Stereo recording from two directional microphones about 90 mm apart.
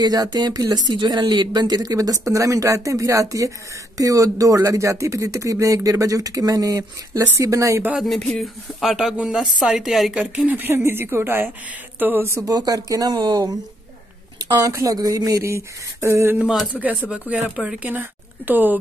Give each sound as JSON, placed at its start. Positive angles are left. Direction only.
{"t": 0.0, "sound": "speech", "side_deg": -45}
{"t": 0.9, "sound": "speech", "side_deg": -55}
{"t": 8.3, "sound": "speech", "side_deg": 0}
{"t": 10.2, "sound": "speech", "side_deg": -15}
{"t": 12.4, "sound": "speech", "side_deg": -45}
{"t": 14.6, "sound": "speech", "side_deg": -40}
{"t": 16.7, "sound": "speech", "side_deg": -15}